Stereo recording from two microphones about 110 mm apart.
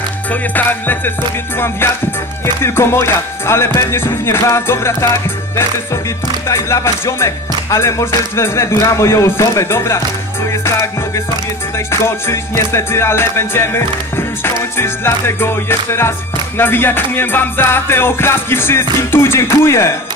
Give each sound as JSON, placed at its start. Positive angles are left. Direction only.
{"t": 0.3, "sound": "music", "side_deg": 15}
{"t": 2.4, "sound": "speech", "side_deg": 20}
{"t": 10.5, "sound": "music", "side_deg": 25}
{"t": 11.9, "sound": "speech", "side_deg": 25}